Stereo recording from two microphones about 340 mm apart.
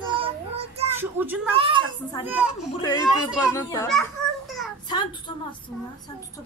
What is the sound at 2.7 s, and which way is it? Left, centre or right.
A woman's voice, centre.